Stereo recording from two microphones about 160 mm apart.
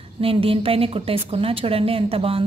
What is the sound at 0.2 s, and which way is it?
A woman's voice, 35° right (ahead or behind).